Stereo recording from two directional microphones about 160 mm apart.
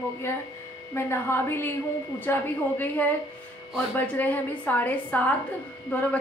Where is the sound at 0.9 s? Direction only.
15° left (ahead or behind).